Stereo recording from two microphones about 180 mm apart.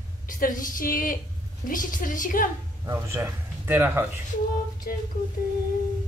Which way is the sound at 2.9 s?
15° right (ahead or behind).